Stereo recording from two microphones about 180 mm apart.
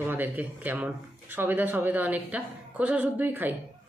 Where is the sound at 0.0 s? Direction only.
10° right (ahead or behind).